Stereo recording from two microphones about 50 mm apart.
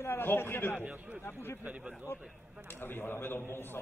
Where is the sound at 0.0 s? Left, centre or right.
Left.